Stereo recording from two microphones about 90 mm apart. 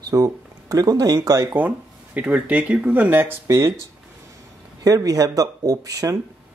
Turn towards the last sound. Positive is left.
turn(degrees=-45)  # may be behind; listen again after turning